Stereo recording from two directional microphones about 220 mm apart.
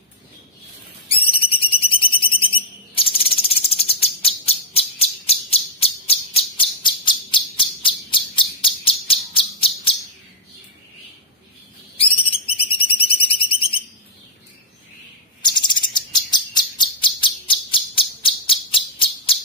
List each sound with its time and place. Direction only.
1.1 s whistle: 25° left (ahead or behind)
2.5 s a sound: 25° left (ahead or behind)
12.0 s bird: 25° left (ahead or behind)
13.2 s alarm: 25° left (ahead or behind)
15.4 s bird: 20° left (ahead or behind)